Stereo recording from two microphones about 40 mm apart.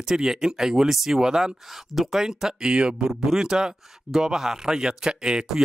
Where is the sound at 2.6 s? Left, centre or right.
Right.